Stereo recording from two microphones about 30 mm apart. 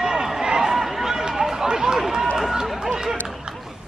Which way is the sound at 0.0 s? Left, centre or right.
Centre.